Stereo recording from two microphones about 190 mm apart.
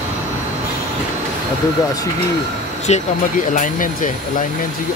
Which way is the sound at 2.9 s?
40° left (ahead or behind).